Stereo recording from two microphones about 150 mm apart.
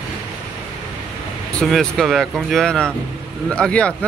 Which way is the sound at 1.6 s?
Centre (ahead or behind).